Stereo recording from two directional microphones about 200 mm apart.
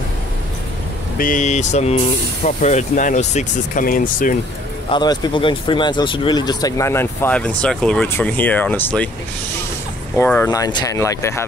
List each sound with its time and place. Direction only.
1.1 s speech: 40° left (ahead or behind)
4.9 s speech: 20° left (ahead or behind)
10.1 s speech: 10° left (ahead or behind)